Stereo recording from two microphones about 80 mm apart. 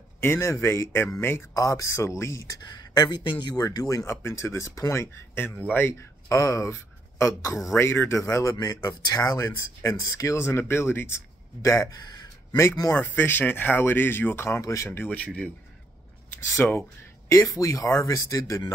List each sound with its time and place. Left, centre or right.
0.2 s speech: left
1.5 s speech: left
2.6 s speech: left
3.5 s speech: left
4.0 s speech: left
6.2 s speech: left
11.6 s speech: left
12.9 s speech: left
14.6 s speech: left
14.9 s speech: centre
16.6 s speech: left
17.3 s speech: left